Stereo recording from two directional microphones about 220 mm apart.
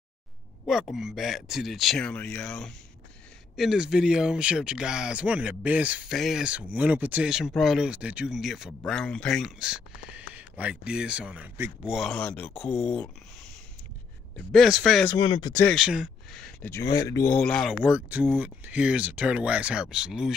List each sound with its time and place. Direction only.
0.9 s speech: centre (ahead or behind)
14.3 s speech: centre (ahead or behind)
15.0 s speech: 20° left (ahead or behind)
15.6 s speech: centre (ahead or behind); by 17.4 s 15° left (ahead or behind)
17.4 s speech: centre (ahead or behind)